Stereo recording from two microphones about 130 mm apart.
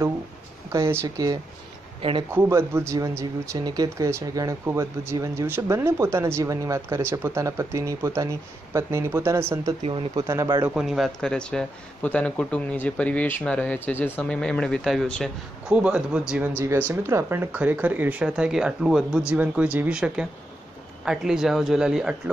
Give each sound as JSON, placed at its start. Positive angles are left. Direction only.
{"t": 0.7, "sound": "speech", "side_deg": -25}
{"t": 2.0, "sound": "speech", "side_deg": -45}
{"t": 2.3, "sound": "speech", "side_deg": -20}
{"t": 9.8, "sound": "speech", "side_deg": -40}
{"t": 10.2, "sound": "speech", "side_deg": -25}
{"t": 10.7, "sound": "speech", "side_deg": -5}
{"t": 15.7, "sound": "speech", "side_deg": -10}